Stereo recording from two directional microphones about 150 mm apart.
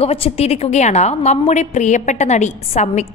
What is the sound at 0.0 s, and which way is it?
A woman's voice, 40° left (ahead or behind).